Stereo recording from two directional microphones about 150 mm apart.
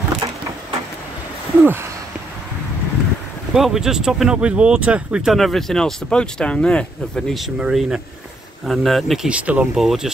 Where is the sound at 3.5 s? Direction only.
5° right (ahead or behind).